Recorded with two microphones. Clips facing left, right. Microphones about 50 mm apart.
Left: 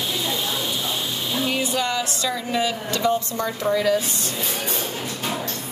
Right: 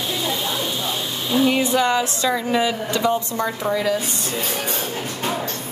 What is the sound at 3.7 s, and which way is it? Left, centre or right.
Speech, centre.